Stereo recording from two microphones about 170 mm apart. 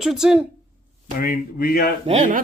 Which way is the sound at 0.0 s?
Centre (ahead or behind).